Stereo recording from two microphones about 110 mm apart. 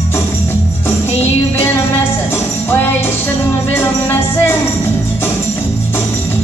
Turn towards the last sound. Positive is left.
turn(degrees=20)  # may be behind; listen again after turning